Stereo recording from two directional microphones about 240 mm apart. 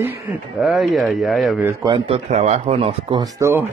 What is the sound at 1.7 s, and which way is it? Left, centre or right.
Speech, centre.